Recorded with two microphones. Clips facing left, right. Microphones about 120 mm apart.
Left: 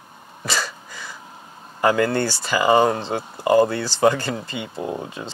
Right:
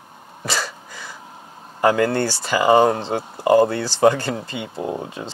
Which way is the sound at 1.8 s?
45° right (ahead or behind).